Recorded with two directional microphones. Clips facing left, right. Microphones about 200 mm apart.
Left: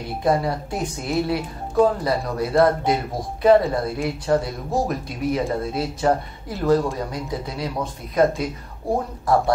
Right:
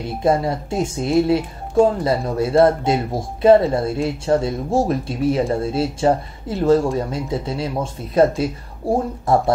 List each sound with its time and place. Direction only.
0.2 s speech: 25° right (ahead or behind)